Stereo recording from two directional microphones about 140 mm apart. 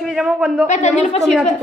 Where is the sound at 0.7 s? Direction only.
50° left (ahead or behind).